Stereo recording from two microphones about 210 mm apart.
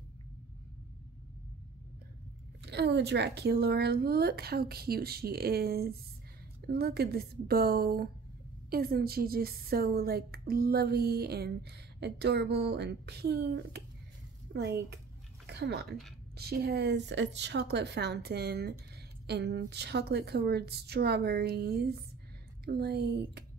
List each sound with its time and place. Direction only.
2.6 s a woman's voice: 55° right (ahead or behind)